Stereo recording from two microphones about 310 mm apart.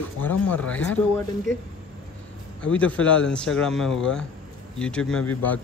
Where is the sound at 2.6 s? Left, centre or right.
Centre.